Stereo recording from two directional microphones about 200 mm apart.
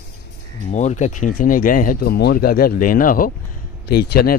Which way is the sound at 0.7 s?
35° left (ahead or behind).